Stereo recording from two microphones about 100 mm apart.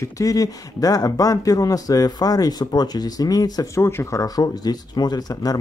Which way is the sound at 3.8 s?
25° left (ahead or behind).